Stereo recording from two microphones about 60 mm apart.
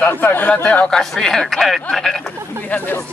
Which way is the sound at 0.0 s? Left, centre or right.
Left.